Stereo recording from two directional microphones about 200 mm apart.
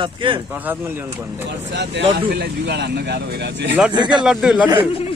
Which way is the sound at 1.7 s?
60° right (ahead or behind).